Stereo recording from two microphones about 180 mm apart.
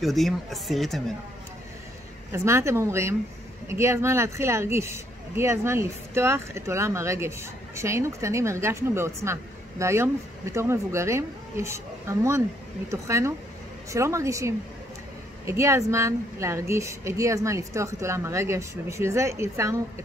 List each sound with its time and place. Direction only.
0.0 s speech: centre (ahead or behind)
2.3 s speech: 15° right (ahead or behind)